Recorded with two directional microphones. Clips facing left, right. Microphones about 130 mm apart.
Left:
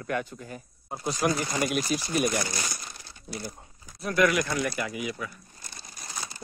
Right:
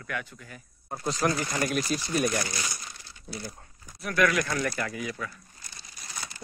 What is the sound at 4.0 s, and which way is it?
Speech, 20° left (ahead or behind).